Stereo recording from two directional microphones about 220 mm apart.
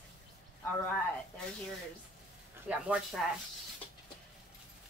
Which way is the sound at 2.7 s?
5° right (ahead or behind).